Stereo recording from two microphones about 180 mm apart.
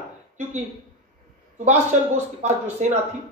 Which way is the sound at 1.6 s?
40° right (ahead or behind).